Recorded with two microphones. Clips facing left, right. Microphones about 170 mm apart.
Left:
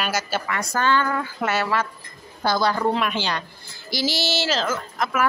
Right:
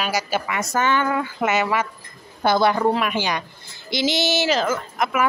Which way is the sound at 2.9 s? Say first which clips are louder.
Right 2 dB; 10° right (ahead or behind).